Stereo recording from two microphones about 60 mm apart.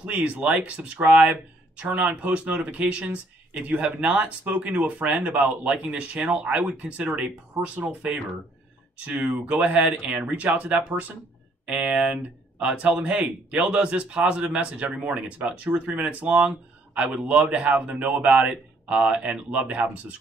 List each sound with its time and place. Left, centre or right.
0.0 s speech: right